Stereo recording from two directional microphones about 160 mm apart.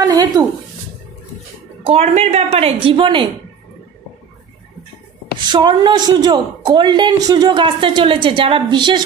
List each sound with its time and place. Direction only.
0.0 s a sound: 25° right (ahead or behind)
1.9 s a woman's voice: 40° right (ahead or behind)
5.5 s a woman's voice: 25° right (ahead or behind)